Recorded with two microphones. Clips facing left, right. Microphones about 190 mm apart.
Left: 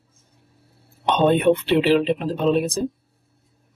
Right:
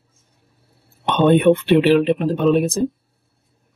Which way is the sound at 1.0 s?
55° right (ahead or behind).